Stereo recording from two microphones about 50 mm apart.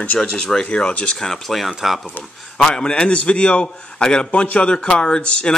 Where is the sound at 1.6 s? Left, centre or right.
Centre.